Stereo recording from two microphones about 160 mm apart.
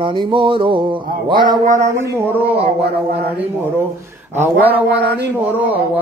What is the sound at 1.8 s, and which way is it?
Speech, 20° right (ahead or behind).